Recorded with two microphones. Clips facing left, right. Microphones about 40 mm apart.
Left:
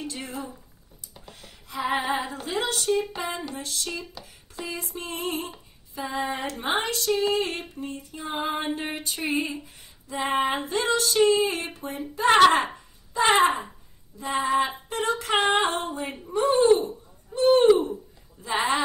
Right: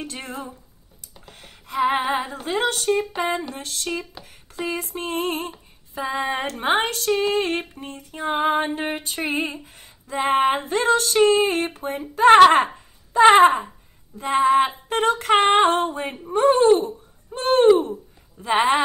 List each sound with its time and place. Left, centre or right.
0.0 s female singing: right
1.2 s a sound: right
2.0 s female singing: right
3.9 s speech: right
4.2 s a sound: right
5.9 s female singing: right
12.7 s a sound: right
14.1 s female singing: right
17.3 s speech: right
18.4 s female singing: right